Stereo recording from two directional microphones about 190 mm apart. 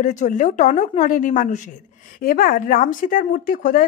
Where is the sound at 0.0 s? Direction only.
40° left (ahead or behind).